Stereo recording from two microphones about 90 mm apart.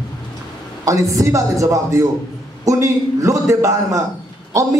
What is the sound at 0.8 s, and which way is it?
A man's voice, 40° right (ahead or behind).